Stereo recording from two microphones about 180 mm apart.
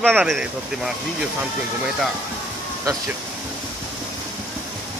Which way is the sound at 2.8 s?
20° right (ahead or behind).